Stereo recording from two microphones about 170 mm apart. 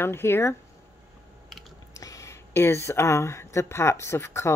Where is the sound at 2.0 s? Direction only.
20° left (ahead or behind).